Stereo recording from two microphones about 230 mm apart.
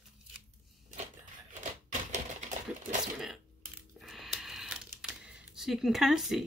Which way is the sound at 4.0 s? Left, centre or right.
Centre.